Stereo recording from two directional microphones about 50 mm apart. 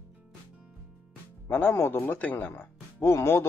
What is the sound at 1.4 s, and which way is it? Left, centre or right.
Speech, left.